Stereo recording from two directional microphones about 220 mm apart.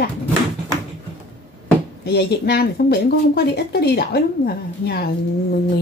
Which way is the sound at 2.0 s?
45° left (ahead or behind).